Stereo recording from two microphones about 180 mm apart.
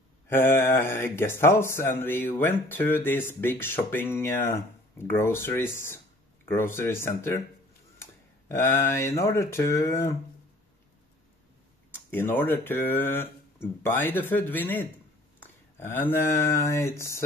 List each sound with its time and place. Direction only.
0.6 s speech: 15° left (ahead or behind)
12.1 s speech: 10° left (ahead or behind)